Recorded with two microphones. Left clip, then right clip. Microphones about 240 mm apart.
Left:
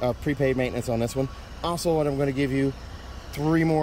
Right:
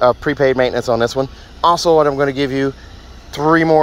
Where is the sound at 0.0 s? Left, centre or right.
Centre.